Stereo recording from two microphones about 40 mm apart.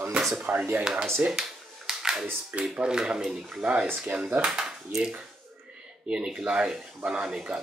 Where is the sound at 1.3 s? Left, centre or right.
Centre.